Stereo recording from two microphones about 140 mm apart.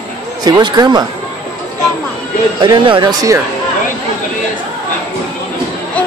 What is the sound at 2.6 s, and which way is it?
Speech, 35° right (ahead or behind).